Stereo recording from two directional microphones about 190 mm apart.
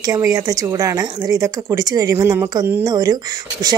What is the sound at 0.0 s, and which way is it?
A woman's voice, 20° right (ahead or behind).